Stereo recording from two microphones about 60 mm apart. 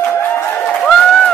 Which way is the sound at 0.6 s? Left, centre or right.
Centre.